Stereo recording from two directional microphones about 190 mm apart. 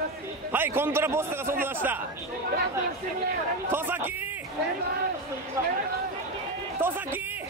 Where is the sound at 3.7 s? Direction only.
10° right (ahead or behind).